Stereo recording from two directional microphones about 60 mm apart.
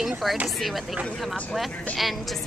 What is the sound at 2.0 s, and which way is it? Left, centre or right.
Speech, centre.